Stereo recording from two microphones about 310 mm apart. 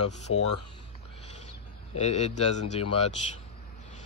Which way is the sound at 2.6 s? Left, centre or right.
Left.